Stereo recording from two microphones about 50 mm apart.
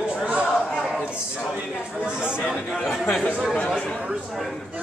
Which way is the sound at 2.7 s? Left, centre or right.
Centre.